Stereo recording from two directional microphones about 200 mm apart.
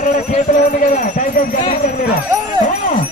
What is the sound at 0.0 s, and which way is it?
Speech, 40° left (ahead or behind).